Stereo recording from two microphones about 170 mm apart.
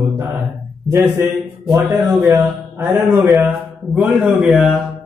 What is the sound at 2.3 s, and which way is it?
A man's voice, 15° right (ahead or behind).